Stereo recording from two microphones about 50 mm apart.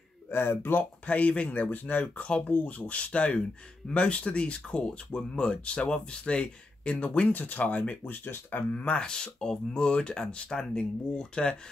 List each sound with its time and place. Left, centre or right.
0.3 s speech: left
1.0 s speech: left
8.7 s speech: left